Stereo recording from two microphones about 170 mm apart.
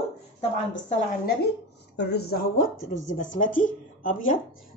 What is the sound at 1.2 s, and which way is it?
A woman's voice, 65° left (ahead or behind).